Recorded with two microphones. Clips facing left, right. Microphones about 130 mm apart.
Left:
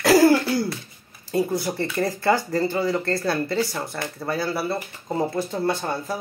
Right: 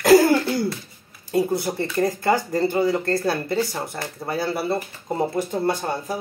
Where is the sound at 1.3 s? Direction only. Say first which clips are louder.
Right 2 dB; 20° right (ahead or behind).